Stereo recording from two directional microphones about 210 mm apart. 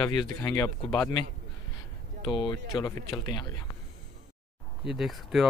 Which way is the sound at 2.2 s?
20° left (ahead or behind).